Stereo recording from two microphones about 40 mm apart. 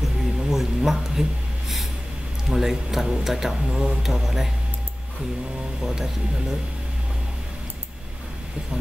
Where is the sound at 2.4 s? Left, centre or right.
Centre.